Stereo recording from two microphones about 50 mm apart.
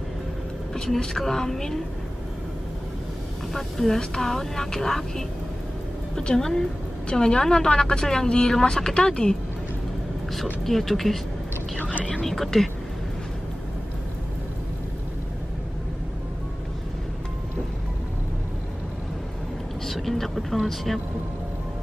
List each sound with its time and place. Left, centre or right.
0.9 s a woman's voice: centre
3.5 s a woman's voice: centre
10.3 s speech: centre
12.0 s speech: left
12.3 s speech: centre
19.9 s vehicle: centre